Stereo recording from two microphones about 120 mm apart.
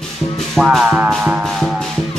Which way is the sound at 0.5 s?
Centre (ahead or behind).